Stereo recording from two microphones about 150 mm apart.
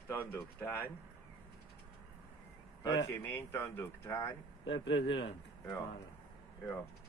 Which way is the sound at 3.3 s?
15° left (ahead or behind).